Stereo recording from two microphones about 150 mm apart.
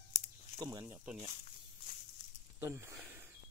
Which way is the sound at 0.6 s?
25° right (ahead or behind).